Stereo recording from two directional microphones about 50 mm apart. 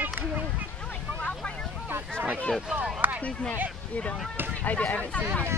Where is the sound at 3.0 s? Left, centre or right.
Right.